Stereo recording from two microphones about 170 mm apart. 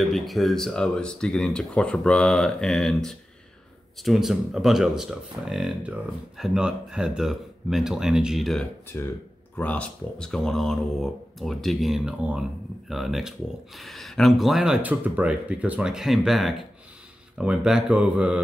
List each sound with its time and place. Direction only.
0.0 s speech: centre (ahead or behind)
8.9 s speech: 15° left (ahead or behind); by 18.4 s 5° right (ahead or behind)